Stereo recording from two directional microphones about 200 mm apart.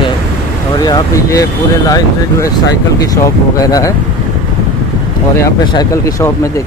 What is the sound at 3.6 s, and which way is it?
Speech, 20° left (ahead or behind).